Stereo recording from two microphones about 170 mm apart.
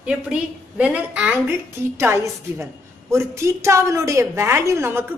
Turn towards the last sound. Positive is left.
turn(degrees=-15)  # may be behind; listen again after turning